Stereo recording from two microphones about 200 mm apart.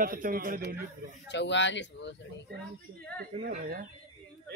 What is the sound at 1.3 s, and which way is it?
Speech, 60° left (ahead or behind).